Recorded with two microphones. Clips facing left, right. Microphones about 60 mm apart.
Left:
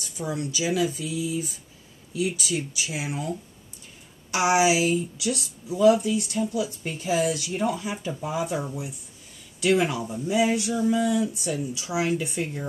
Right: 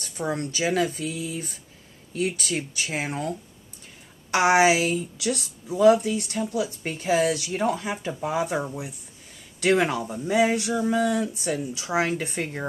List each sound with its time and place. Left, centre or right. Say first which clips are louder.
0.0 s speech: right 2 dB; right
9.6 s speech: right 1 dB; right